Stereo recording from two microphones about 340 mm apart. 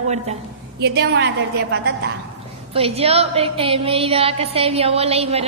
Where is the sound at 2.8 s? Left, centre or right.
Centre.